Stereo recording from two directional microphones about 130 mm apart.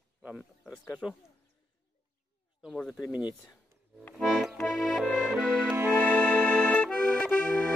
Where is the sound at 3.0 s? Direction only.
10° right (ahead or behind).